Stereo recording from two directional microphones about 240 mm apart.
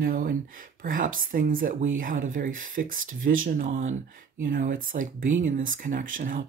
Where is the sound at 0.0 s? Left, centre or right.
Right.